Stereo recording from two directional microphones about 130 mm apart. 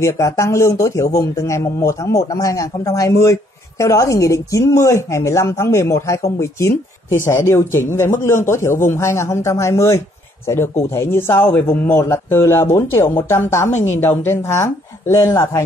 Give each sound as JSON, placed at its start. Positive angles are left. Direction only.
{"t": 0.0, "sound": "a man's voice", "side_deg": 20}